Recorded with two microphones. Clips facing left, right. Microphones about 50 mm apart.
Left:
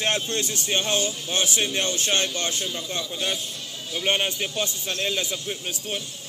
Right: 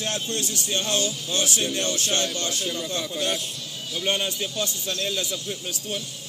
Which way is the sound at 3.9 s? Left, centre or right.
Left.